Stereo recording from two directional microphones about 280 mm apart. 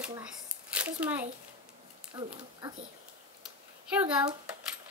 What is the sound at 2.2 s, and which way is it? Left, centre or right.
Speech, centre.